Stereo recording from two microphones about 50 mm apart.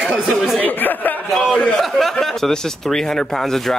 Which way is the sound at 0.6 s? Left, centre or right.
Left.